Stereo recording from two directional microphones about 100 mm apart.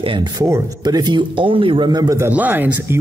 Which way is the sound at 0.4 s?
40° right (ahead or behind).